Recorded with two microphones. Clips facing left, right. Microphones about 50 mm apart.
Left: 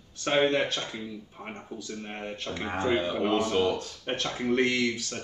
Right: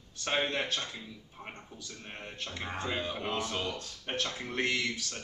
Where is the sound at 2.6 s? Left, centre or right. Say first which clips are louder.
Left 8 dB; left.